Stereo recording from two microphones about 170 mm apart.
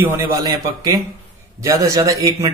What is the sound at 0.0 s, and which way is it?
Speech, 15° right (ahead or behind).